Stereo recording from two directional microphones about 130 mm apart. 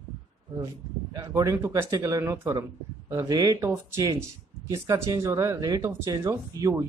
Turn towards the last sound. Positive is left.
turn(degrees=-25)  # may be behind; listen again after turning